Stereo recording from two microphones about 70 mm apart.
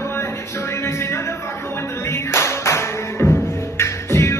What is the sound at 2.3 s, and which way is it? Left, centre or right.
Music, left.